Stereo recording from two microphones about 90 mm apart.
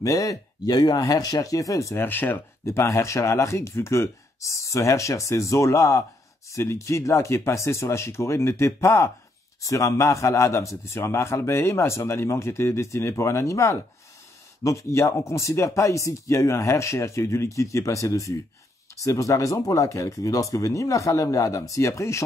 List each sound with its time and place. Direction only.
0.0 s a man's voice: 40° left (ahead or behind)
2.0 s a man's voice: 20° left (ahead or behind)